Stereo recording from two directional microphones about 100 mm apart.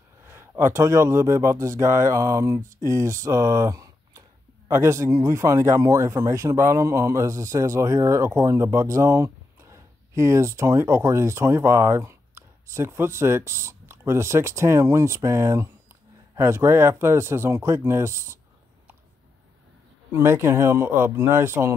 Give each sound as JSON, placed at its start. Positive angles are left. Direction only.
{"t": 0.2, "sound": "speech", "side_deg": -25}
{"t": 20.1, "sound": "speech", "side_deg": -25}